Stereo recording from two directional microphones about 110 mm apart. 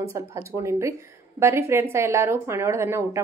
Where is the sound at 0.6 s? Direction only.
25° right (ahead or behind).